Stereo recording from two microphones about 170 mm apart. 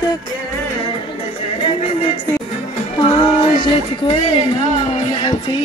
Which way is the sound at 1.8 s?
35° left (ahead or behind).